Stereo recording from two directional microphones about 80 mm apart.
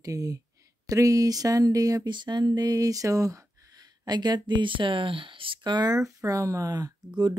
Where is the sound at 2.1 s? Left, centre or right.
Right.